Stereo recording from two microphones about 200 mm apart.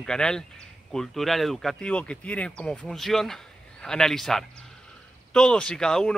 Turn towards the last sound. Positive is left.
turn(degrees=5)  # may be behind; listen again after turning